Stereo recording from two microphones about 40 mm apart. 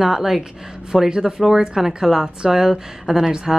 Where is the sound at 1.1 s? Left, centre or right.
Right.